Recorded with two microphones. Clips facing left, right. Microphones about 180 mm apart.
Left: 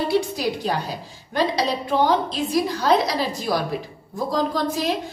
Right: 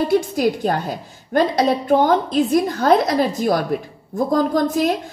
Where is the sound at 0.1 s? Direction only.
50° right (ahead or behind).